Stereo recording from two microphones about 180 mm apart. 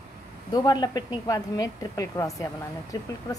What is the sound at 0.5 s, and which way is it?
Speech, 20° left (ahead or behind).